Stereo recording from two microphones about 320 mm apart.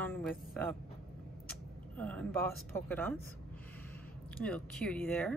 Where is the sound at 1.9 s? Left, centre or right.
Centre.